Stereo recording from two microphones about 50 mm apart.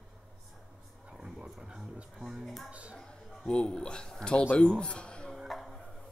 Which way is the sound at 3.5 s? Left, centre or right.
Centre.